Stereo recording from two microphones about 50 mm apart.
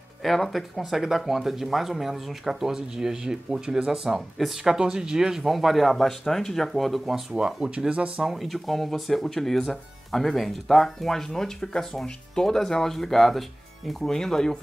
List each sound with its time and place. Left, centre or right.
0.2 s speech: centre
4.7 s speech: centre
5.4 s speech: centre
7.3 s speech: centre
8.2 s speech: centre